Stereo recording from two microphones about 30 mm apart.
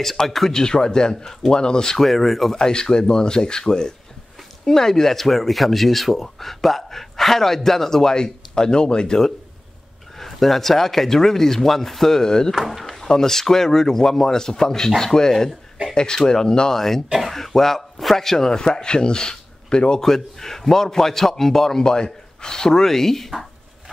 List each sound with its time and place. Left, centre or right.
0.5 s speech: left
2.0 s speech: centre
2.5 s speech: left
10.1 s speech: centre
12.2 s speech: left
12.5 s speech: centre; by 16.8 s left
17.3 s speech: centre
18.5 s speech: left
20.0 s speech: centre
21.8 s a man's voice: left
22.8 s speech: centre